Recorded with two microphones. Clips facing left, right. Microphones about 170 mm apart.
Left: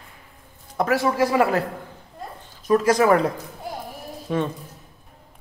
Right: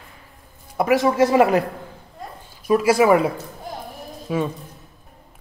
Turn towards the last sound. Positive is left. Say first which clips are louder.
# right 1 dB
turn(degrees=-5)  # may be behind; listen again after turning